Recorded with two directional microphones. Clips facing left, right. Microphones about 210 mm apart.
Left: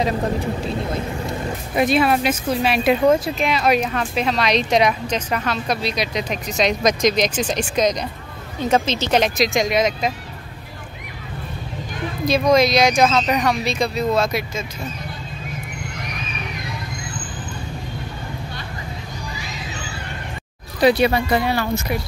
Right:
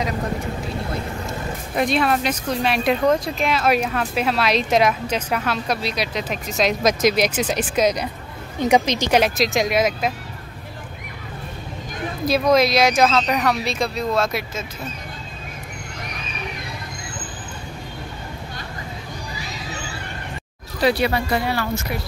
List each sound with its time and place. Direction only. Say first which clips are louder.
1.8 s speech: left 3 dB; 5° left (ahead or behind)
12.3 s speech: left 1 dB; 5° right (ahead or behind)
20.8 s speech: left 4 dB; 20° left (ahead or behind)